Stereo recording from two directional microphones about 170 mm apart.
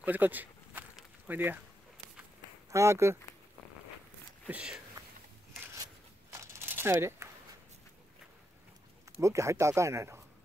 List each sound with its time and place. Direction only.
0.0 s a sound: 10° right (ahead or behind)
2.7 s speech: 15° right (ahead or behind)
4.5 s speech: 5° right (ahead or behind)
6.3 s crumpling: 15° right (ahead or behind)
9.2 s speech: 15° right (ahead or behind)